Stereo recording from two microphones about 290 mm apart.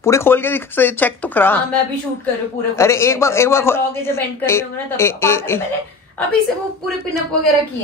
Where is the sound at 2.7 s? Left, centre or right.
Centre.